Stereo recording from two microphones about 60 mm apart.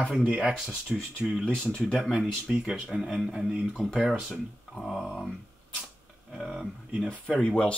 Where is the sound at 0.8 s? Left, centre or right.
Left.